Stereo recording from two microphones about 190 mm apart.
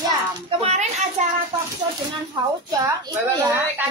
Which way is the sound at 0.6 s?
35° right (ahead or behind).